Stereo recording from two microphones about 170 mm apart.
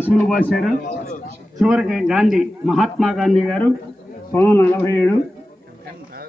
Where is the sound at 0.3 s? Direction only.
Centre (ahead or behind).